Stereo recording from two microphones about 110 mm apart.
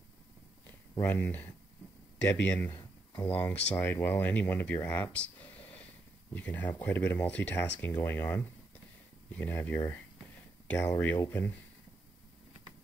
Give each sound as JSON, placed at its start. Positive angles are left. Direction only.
{"t": 1.0, "sound": "speech", "side_deg": 15}
{"t": 4.8, "sound": "a sound", "side_deg": 15}
{"t": 6.3, "sound": "speech", "side_deg": 15}